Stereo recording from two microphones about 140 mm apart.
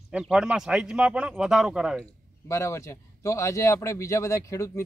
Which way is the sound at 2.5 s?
20° left (ahead or behind).